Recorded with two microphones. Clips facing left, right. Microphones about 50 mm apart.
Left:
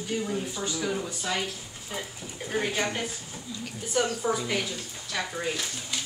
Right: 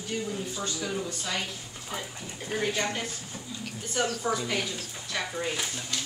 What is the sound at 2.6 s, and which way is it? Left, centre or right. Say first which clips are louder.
A woman's voice: right 1 dB; centre.